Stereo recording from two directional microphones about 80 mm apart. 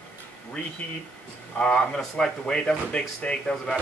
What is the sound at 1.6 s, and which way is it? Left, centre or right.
Speech, centre.